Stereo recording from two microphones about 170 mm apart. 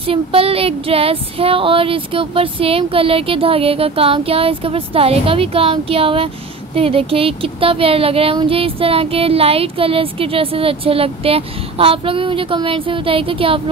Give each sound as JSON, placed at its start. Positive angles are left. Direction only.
{"t": 0.1, "sound": "speech", "side_deg": -35}